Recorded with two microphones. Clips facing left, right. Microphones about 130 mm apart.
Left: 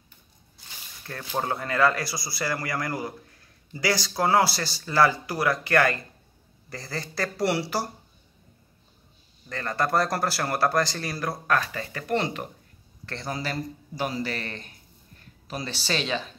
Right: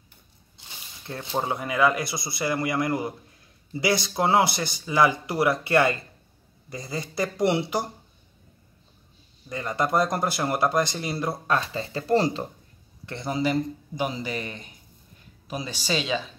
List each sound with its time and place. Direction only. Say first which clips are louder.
1.0 s speech: right 1 dB; 15° right (ahead or behind)
9.5 s speech: right 1 dB; 20° right (ahead or behind)
13.0 s a man's voice: right 6 dB; 20° right (ahead or behind)